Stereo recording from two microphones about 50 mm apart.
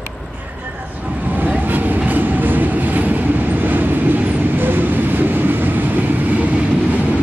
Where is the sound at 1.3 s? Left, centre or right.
Right.